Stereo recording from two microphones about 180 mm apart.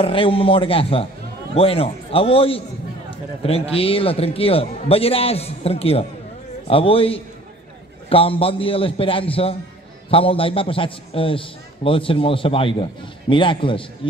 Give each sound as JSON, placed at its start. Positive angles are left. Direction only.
{"t": 0.0, "sound": "a man's voice", "side_deg": 30}